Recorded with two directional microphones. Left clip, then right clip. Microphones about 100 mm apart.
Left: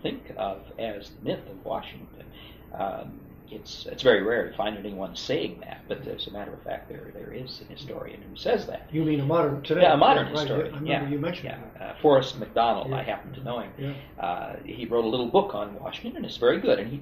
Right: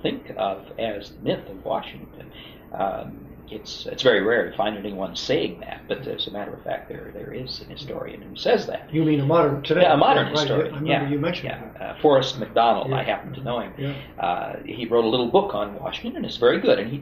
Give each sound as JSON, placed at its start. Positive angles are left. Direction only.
{"t": 0.0, "sound": "speech", "side_deg": -30}
{"t": 2.7, "sound": "a man's voice", "side_deg": -45}
{"t": 3.5, "sound": "a man's voice", "side_deg": -30}